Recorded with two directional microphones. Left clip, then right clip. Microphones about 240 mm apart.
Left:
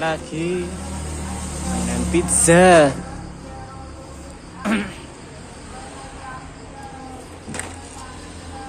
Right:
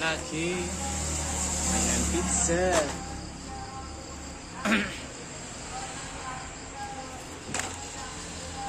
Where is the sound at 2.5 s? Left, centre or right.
Left.